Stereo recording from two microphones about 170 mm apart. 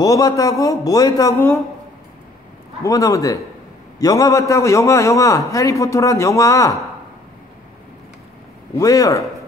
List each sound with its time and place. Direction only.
0.0 s speech: 20° left (ahead or behind)
2.8 s speech: 20° left (ahead or behind)
8.7 s speech: 20° left (ahead or behind)